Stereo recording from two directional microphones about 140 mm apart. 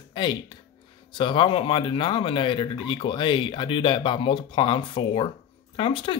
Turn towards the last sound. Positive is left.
turn(degrees=40)  # may be behind; listen again after turning